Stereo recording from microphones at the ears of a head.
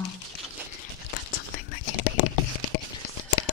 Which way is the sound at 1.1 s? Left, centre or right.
Left.